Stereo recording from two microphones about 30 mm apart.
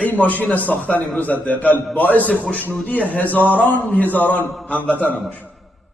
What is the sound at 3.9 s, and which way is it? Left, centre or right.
Speech, left.